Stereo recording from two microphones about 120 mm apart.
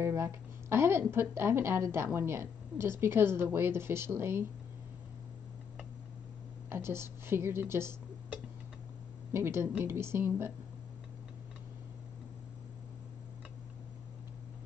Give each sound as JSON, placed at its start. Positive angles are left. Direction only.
{"t": 0.0, "sound": "a woman's voice", "side_deg": -25}
{"t": 6.7, "sound": "a woman's voice", "side_deg": -20}